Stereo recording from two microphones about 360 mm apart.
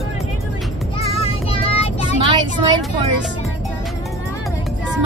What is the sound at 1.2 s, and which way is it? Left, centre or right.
Child singing, centre.